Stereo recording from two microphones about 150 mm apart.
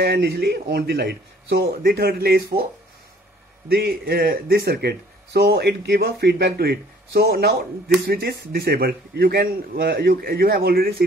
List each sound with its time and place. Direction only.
0.0 s speech: 90° right
3.6 s speech: 90° right